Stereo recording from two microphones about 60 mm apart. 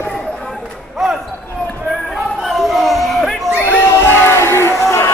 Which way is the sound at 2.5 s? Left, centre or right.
Centre.